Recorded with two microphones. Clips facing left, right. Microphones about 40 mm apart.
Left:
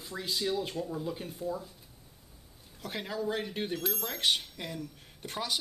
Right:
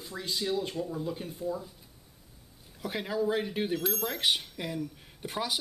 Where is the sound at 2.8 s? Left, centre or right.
Centre.